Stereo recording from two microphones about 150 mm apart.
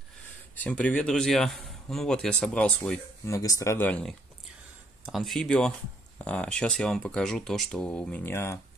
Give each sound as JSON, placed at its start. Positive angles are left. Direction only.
{"t": 0.6, "sound": "speech", "side_deg": 5}
{"t": 3.3, "sound": "speech", "side_deg": 25}
{"t": 5.0, "sound": "speech", "side_deg": 0}